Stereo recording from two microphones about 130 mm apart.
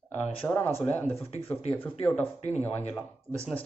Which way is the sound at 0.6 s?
20° left (ahead or behind).